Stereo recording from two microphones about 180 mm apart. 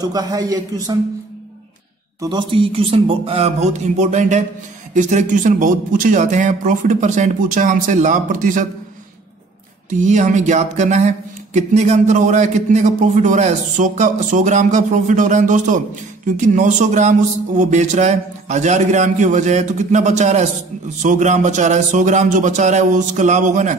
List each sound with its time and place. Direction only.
0.0 s a man's voice: 20° right (ahead or behind)
2.1 s speech: 25° right (ahead or behind); by 8.6 s 45° right (ahead or behind)
9.8 s speech: 45° right (ahead or behind)